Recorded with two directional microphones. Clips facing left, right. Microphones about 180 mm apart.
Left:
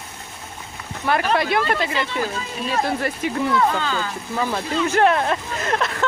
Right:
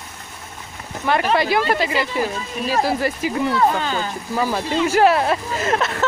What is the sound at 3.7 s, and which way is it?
Speech, 20° right (ahead or behind).